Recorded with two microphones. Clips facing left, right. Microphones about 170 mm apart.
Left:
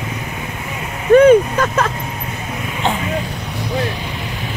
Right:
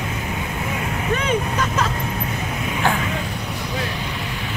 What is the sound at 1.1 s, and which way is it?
Vehicle, 50° left (ahead or behind).